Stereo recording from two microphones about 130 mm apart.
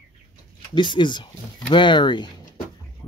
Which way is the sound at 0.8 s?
35° left (ahead or behind).